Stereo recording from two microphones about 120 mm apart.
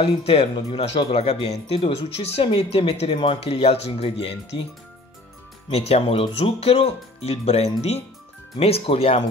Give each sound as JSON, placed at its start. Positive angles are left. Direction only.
{"t": 0.0, "sound": "speech", "side_deg": 55}
{"t": 5.7, "sound": "speech", "side_deg": 60}